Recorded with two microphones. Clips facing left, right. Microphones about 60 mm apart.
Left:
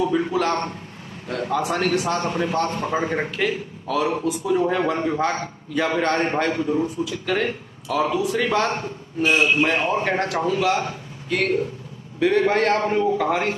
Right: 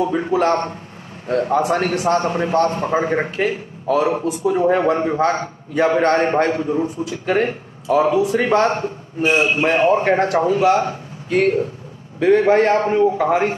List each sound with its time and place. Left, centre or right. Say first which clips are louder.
0.0 s a man's voice: right 3 dB; right
3.3 s a man's voice: right 3 dB; right